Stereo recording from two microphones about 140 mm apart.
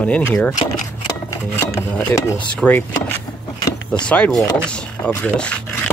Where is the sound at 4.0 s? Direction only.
5° left (ahead or behind).